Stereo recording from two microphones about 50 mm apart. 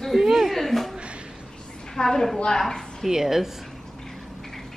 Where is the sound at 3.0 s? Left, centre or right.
Centre.